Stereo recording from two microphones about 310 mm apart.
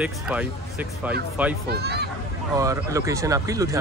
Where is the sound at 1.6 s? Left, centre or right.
Right.